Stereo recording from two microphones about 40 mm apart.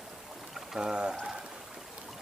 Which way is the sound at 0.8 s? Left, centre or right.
Centre.